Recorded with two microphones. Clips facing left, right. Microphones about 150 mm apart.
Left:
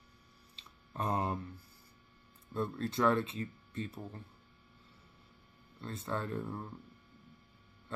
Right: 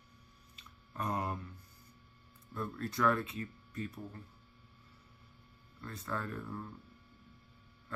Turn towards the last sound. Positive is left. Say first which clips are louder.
# left 3 dB
turn(degrees=25)  # may be behind; listen again after turning